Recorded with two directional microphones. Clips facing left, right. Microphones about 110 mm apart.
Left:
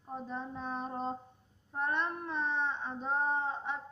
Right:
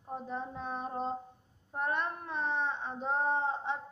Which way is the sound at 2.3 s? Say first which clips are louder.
Right 2 dB; 15° right (ahead or behind).